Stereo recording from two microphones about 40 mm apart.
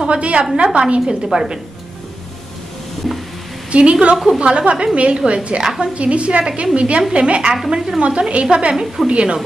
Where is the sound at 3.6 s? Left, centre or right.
Right.